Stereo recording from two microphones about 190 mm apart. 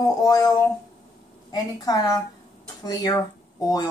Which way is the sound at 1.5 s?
20° left (ahead or behind).